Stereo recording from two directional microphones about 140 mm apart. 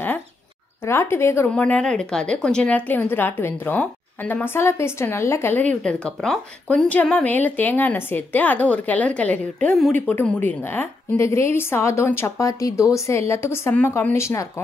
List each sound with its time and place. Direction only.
0.8 s a woman's voice: 20° left (ahead or behind)